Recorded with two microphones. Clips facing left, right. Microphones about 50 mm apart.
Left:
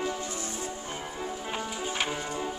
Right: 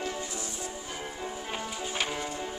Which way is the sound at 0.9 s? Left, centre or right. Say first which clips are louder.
Left 1 dB; centre.